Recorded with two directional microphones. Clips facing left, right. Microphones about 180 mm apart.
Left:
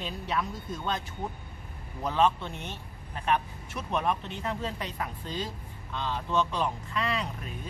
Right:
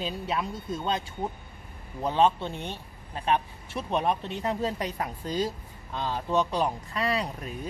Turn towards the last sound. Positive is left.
turn(degrees=-35)  # may be behind; listen again after turning